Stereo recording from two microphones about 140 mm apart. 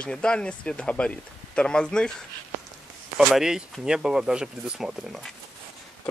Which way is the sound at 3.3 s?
5° right (ahead or behind).